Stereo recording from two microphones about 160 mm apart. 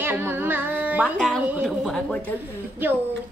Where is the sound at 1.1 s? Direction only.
5° left (ahead or behind).